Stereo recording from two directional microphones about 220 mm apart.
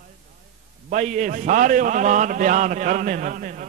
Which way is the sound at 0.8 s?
35° right (ahead or behind).